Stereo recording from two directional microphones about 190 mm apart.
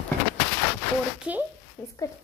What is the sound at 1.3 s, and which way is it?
Speech, 5° right (ahead or behind).